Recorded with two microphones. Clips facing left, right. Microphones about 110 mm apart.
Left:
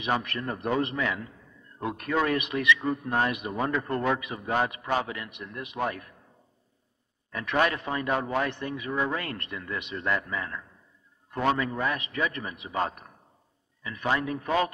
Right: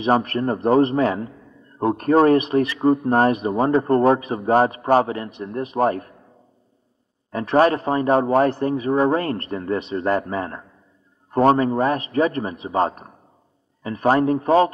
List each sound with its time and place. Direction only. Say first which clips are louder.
0.0 s a man's voice: right 10 dB; 40° right (ahead or behind)
7.2 s a man's voice: right 9 dB; 35° right (ahead or behind)